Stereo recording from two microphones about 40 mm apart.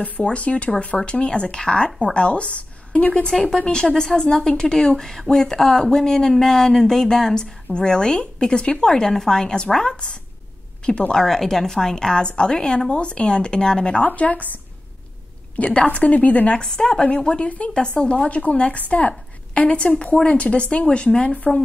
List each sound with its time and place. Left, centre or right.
0.0 s a woman's voice: left
3.3 s a woman's voice: centre
14.0 s a woman's voice: left
16.5 s a woman's voice: centre
21.5 s a woman's voice: centre